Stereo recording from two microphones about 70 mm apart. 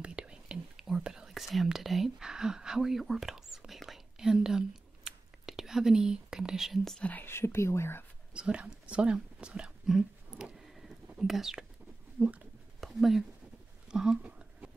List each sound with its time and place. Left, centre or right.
0.0 s whispering: centre
7.0 s speech: left
7.2 s speech: left
8.3 s speech: centre
10.3 s whispering: centre
12.8 s a sound: centre